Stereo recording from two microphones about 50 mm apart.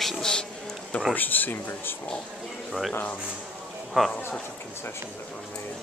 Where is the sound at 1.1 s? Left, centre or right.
Left.